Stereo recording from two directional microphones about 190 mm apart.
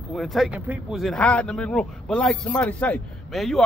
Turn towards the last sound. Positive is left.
turn(degrees=0)  # may be behind; listen again after turning